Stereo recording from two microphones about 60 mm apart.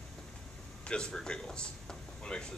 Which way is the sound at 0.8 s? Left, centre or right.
Centre.